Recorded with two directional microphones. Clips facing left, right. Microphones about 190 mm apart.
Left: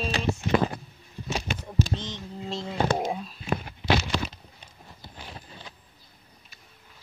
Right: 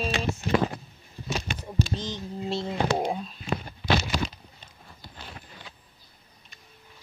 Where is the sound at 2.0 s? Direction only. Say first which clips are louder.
Right 3 dB; 35° right (ahead or behind).